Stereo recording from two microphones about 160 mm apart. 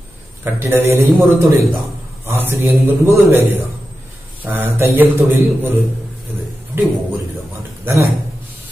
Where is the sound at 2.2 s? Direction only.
15° right (ahead or behind).